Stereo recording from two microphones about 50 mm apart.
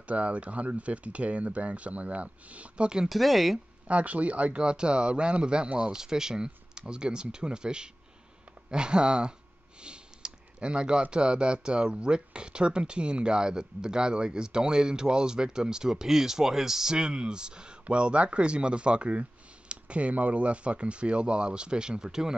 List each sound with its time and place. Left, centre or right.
0.0 s speech: right
3.1 s speech: centre
3.8 s speech: right; by 22.3 s centre